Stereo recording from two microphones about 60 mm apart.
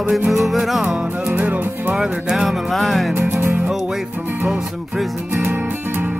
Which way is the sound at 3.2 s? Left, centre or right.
Right.